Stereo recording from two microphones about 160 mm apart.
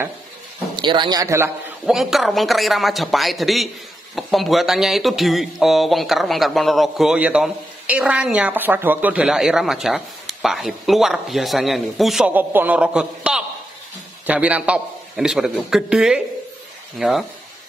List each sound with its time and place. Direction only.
0.7 s speech: 30° right (ahead or behind)
1.9 s speech: centre (ahead or behind)